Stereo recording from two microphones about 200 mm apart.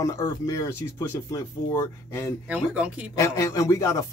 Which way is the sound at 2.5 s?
5° right (ahead or behind).